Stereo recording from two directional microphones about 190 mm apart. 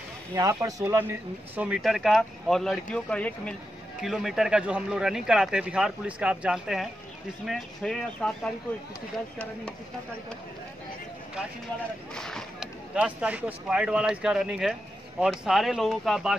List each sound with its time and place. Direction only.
0.3 s speech: 15° right (ahead or behind); by 8.5 s 5° left (ahead or behind)
12.1 s speech: 5° left (ahead or behind)